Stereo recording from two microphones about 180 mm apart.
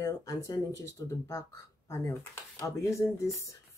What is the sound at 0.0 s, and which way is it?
Speech, 20° left (ahead or behind).